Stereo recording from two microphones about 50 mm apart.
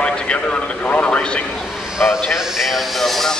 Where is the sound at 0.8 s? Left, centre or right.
Left.